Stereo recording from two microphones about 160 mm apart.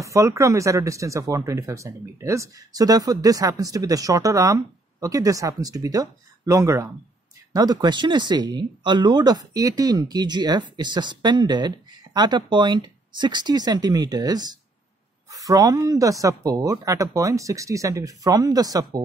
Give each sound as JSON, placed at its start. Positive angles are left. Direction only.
{"t": 0.0, "sound": "speech", "side_deg": -20}